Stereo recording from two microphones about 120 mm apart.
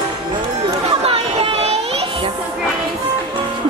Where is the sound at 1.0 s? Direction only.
55° right (ahead or behind).